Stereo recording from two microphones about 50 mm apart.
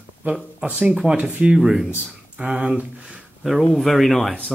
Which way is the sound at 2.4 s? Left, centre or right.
Right.